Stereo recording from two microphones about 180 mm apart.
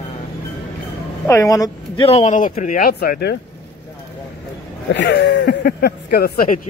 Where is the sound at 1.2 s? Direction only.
15° left (ahead or behind).